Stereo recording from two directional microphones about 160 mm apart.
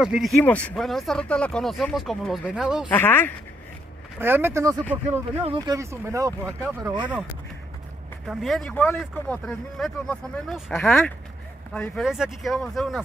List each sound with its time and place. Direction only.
0.0 s speech: centre (ahead or behind)
2.9 s speech: 15° left (ahead or behind)
4.2 s speech: 15° right (ahead or behind)
5.4 s speech: 30° right (ahead or behind)
8.3 s speech: centre (ahead or behind)
10.8 s speech: 15° left (ahead or behind)